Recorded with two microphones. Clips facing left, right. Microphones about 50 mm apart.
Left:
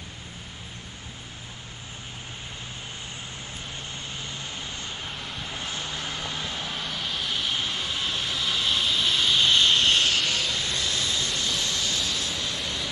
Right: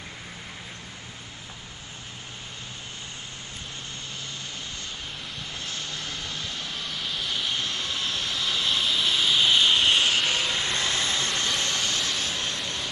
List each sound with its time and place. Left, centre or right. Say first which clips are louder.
5.5 s vehicle: left 2 dB; centre
6.9 s vehicle: right 1 dB; centre; by 12.9 s right